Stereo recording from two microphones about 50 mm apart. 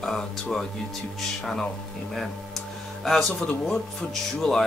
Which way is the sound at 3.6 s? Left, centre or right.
Centre.